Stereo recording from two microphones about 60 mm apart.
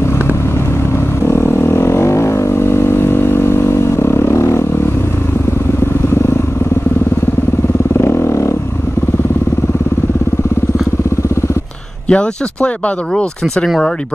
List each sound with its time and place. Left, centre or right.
1.2 s vehicle: left
8.0 s vehicle: left
12.1 s speech: centre